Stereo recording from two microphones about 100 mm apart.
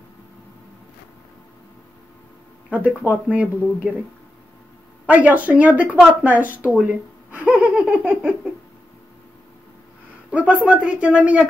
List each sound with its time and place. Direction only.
3.0 s speech: 15° right (ahead or behind)
5.0 s speech: 15° right (ahead or behind)
10.3 s speech: 15° right (ahead or behind)